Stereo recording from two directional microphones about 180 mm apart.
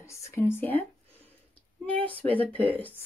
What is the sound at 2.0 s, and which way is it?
Speech, 10° left (ahead or behind).